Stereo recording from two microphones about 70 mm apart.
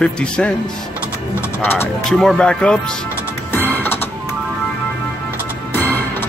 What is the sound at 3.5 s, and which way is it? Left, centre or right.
Music, left.